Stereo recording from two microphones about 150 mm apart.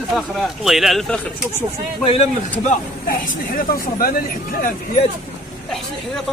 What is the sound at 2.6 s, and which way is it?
Speech, 60° left (ahead or behind).